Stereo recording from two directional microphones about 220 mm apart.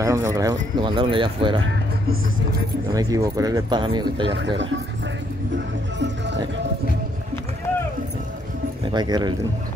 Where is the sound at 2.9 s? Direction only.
15° right (ahead or behind).